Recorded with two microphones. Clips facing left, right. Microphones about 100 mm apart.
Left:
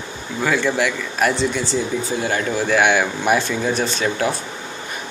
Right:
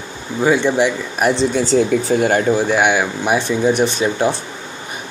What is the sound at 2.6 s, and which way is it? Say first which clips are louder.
Speech: right 1 dB; 10° right (ahead or behind).